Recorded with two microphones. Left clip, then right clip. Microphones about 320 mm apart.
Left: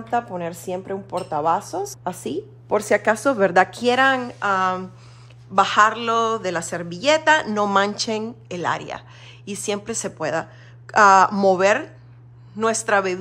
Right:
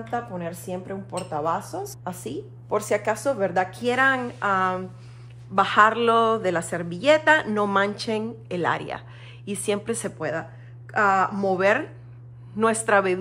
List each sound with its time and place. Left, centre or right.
0.1 s speech: left
3.7 s a woman's voice: centre